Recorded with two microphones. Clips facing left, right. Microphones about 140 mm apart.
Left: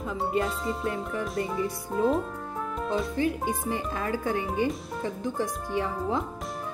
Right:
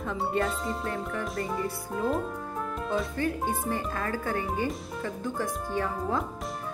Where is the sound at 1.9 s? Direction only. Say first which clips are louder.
Left 4 dB; centre (ahead or behind).